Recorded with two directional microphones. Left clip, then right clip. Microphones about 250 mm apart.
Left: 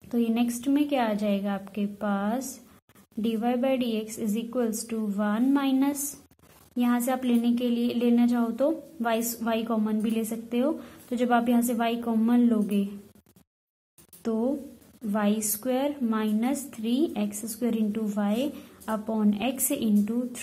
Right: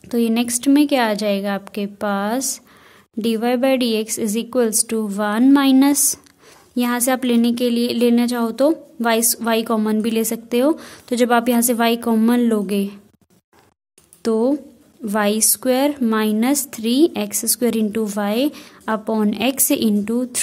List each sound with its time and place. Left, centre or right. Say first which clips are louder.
0.1 s speech: right 8 dB; right
14.2 s speech: right 10 dB; right